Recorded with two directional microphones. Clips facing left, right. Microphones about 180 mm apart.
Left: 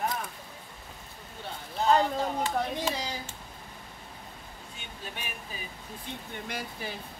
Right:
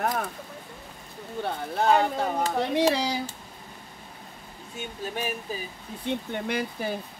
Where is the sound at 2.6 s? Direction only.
75° right (ahead or behind).